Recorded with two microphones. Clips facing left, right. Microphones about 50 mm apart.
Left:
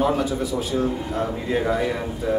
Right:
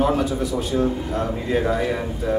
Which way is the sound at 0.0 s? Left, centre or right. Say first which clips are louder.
Right 1 dB; centre.